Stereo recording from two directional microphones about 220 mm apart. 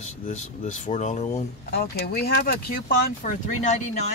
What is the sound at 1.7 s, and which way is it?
Speech, 45° left (ahead or behind).